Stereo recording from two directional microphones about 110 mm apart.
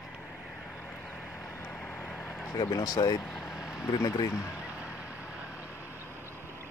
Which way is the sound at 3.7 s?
35° left (ahead or behind).